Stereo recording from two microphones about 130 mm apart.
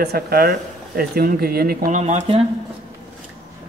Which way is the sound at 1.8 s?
65° right (ahead or behind).